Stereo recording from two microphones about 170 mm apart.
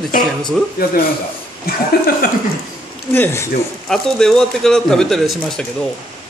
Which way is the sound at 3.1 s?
15° left (ahead or behind).